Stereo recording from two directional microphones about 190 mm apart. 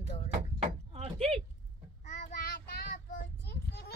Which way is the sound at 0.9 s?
30° right (ahead or behind).